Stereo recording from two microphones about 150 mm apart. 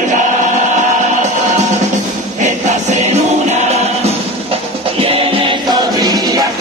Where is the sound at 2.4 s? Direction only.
50° right (ahead or behind).